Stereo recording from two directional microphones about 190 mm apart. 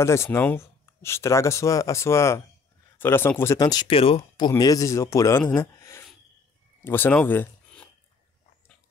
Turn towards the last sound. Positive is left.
turn(degrees=10)  # may be behind; listen again after turning